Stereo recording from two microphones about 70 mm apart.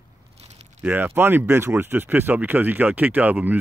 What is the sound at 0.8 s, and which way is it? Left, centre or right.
Speech, right.